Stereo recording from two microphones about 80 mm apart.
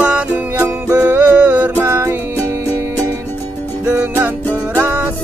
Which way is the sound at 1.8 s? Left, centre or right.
Right.